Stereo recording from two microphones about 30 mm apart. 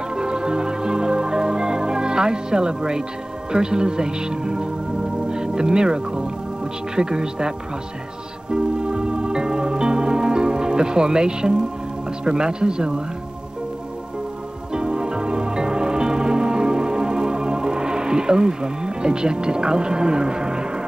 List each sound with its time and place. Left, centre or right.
0.1 s music: right
3.5 s speech: right
8.5 s music: right
12.3 s speech: right
14.7 s music: right